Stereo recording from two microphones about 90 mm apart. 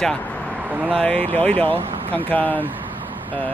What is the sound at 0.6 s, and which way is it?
Speech, 20° right (ahead or behind).